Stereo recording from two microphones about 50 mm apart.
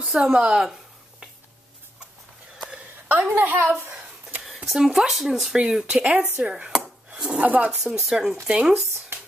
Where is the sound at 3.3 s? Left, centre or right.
Right.